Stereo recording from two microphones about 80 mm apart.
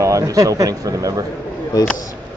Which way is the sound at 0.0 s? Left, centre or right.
Right.